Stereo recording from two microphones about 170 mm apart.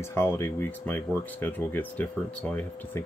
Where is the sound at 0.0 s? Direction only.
15° left (ahead or behind).